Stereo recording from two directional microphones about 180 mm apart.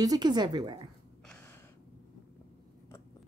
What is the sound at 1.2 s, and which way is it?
Gasp, 10° left (ahead or behind).